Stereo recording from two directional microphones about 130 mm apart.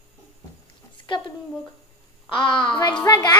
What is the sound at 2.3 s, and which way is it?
Speech, 40° left (ahead or behind).